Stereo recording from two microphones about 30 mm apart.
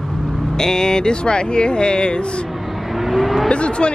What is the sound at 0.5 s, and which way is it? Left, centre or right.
Speech, centre.